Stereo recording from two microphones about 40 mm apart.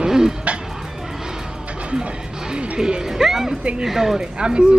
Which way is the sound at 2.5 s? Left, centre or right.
Right.